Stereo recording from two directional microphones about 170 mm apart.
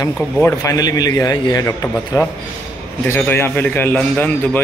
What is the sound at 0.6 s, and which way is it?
A man's voice, 20° left (ahead or behind).